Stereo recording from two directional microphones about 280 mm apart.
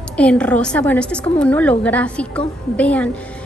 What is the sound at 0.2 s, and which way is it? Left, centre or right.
A woman's voice, centre.